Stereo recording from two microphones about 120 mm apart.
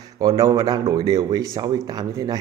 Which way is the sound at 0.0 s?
30° right (ahead or behind).